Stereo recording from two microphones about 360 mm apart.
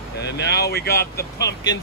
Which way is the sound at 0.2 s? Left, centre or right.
Left.